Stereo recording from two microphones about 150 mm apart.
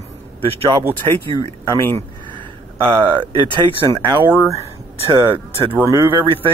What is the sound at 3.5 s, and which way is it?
Speech, 30° right (ahead or behind).